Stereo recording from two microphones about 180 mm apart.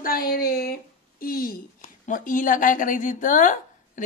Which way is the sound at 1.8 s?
45° left (ahead or behind).